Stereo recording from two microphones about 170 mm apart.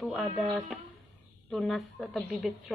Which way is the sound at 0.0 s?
Centre (ahead or behind).